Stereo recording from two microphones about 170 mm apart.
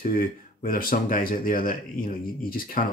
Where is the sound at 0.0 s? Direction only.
55° left (ahead or behind).